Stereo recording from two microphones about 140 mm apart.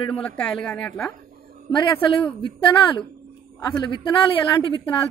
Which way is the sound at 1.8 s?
35° left (ahead or behind).